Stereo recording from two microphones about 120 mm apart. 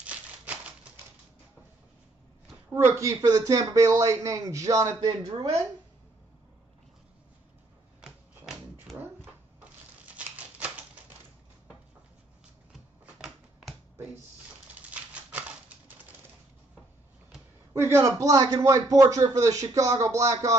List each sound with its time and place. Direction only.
0.0 s a sound: 10° right (ahead or behind)
2.7 s speech: 20° right (ahead or behind)
8.0 s typewriter: 5° right (ahead or behind)
10.1 s typewriter: 10° right (ahead or behind)
13.0 s typewriter: 5° right (ahead or behind)
17.7 s speech: 20° right (ahead or behind)